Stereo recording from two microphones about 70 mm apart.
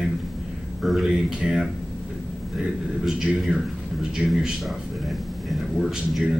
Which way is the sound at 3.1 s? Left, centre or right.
Centre.